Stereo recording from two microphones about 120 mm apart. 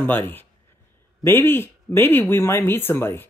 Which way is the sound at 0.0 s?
15° left (ahead or behind).